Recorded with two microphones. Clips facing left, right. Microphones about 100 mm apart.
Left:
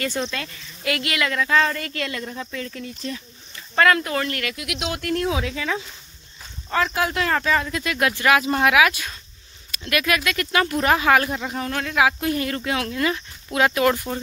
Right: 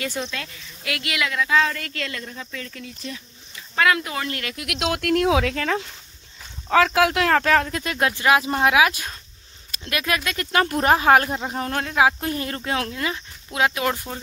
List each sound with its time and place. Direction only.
0.0 s speech: 5° right (ahead or behind)
4.2 s speech: 25° right (ahead or behind)
4.7 s speech: 80° right; by 5.9 s 60° right (ahead or behind)
6.7 s speech: 90° right; by 7.7 s 60° right (ahead or behind)
7.7 s speech: 35° right (ahead or behind)
8.2 s speech: 25° right (ahead or behind)
12.9 s speech: 20° right (ahead or behind)